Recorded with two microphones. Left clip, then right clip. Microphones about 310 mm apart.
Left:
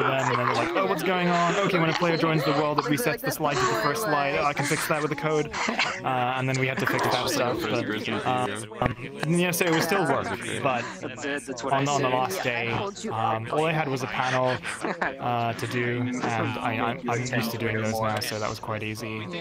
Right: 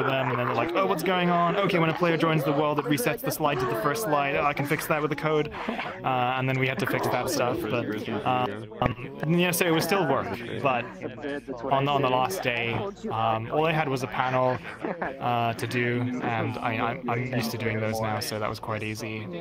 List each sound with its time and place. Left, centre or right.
0.7 s speech: centre
5.6 s speech: left
6.0 s speech: centre
7.0 s speech: left
8.3 s speech: centre
16.3 s speech: centre